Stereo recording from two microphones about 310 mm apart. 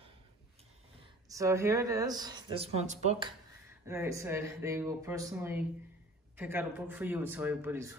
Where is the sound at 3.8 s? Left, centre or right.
Centre.